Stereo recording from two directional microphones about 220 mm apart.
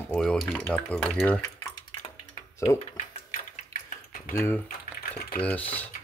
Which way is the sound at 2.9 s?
30° left (ahead or behind).